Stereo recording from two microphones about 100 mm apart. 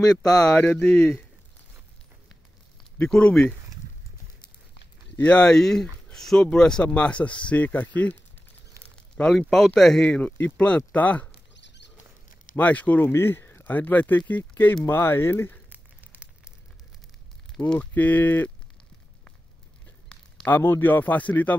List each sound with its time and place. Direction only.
0.0 s speech: 35° left (ahead or behind)
0.5 s speech: 10° left (ahead or behind)
3.1 s speech: 10° left (ahead or behind)
5.1 s speech: 15° left (ahead or behind)
12.5 s speech: 15° left (ahead or behind)
15.7 s a sound: 20° right (ahead or behind)
17.6 s speech: 15° left (ahead or behind)
20.4 s speech: 20° left (ahead or behind)